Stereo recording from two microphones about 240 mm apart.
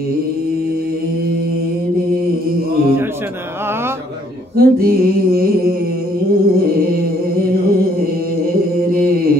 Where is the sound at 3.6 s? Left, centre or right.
Centre.